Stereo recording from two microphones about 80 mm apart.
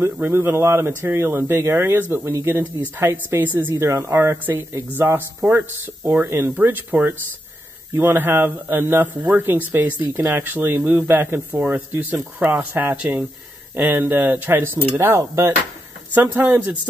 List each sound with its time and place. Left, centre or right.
0.0 s speech: right
16.1 s speech: right